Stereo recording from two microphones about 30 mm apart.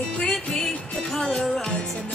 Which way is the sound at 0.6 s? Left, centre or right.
Centre.